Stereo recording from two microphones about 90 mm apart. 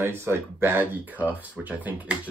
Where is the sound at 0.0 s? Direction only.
25° right (ahead or behind).